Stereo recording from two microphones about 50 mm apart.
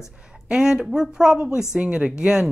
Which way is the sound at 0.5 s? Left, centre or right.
Centre.